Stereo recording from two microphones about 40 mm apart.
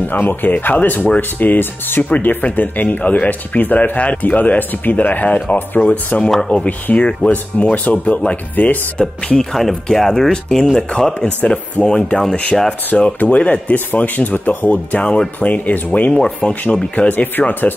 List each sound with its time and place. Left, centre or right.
0.0 s speech: left
2.0 s speech: left
3.9 s speech: left
6.5 s speech: left
9.4 s speech: centre
11.1 s speech: left
12.2 s speech: centre
12.9 s speech: left
14.0 s speech: left
15.0 s speech: left
15.4 s speech: left
17.1 s speech: left